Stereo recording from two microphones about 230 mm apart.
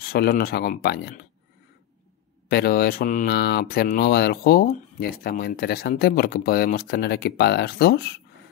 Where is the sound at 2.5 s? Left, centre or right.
Left.